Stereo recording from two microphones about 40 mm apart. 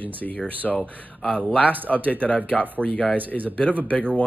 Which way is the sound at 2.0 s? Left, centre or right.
Left.